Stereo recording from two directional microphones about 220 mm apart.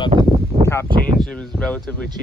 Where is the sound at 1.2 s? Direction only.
Centre (ahead or behind).